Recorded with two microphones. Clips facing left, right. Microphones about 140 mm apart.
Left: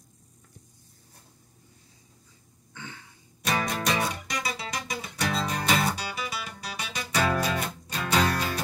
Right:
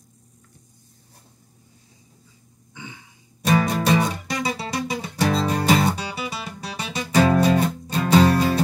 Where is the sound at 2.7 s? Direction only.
15° right (ahead or behind).